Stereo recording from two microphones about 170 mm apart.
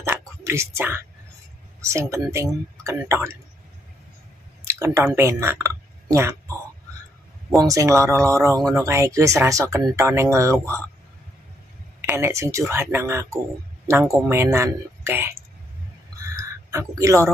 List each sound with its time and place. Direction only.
0.0 s whispering: 15° right (ahead or behind)
1.8 s speech: 15° right (ahead or behind)
4.6 s speech: 15° right (ahead or behind)
7.6 s speech: 20° right (ahead or behind)
12.1 s speech: 15° right (ahead or behind)
16.3 s a sound: 15° right (ahead or behind)